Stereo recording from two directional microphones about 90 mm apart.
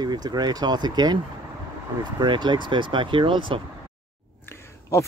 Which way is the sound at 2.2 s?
60° right (ahead or behind).